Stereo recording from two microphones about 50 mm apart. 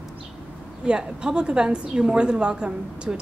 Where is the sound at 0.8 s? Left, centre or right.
Centre.